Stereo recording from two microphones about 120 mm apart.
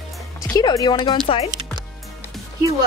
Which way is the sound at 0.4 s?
35° left (ahead or behind).